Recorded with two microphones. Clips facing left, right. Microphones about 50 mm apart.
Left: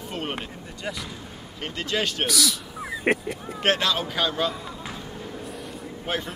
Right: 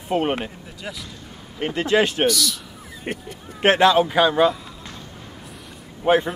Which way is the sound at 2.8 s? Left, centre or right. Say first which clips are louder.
Left 7 dB; left.